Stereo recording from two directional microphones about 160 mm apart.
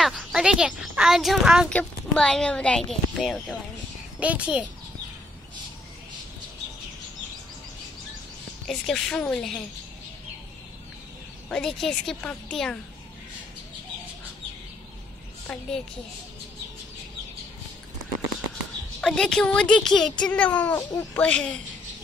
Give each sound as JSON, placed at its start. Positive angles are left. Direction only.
{"t": 0.0, "sound": "a woman's voice", "side_deg": 0}
{"t": 8.6, "sound": "a woman's voice", "side_deg": 0}
{"t": 11.4, "sound": "a woman's voice", "side_deg": 5}
{"t": 18.9, "sound": "a woman's voice", "side_deg": 5}
{"t": 20.7, "sound": "speech", "side_deg": 20}
{"t": 21.2, "sound": "a woman's voice", "side_deg": 5}